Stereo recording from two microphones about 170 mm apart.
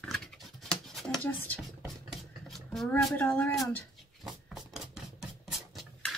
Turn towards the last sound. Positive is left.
turn(degrees=0)  # may be behind; listen again after turning